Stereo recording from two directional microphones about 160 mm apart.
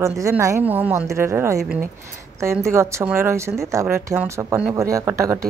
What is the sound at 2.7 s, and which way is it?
Speech, 15° right (ahead or behind).